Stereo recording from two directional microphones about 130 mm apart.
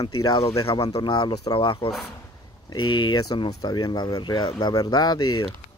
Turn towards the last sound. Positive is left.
turn(degrees=30)  # may be behind; listen again after turning